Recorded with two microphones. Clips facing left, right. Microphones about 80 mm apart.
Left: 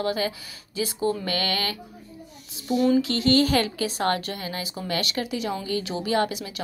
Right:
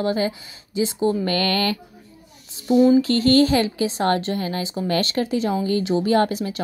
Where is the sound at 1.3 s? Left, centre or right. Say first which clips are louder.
Right 6 dB; right.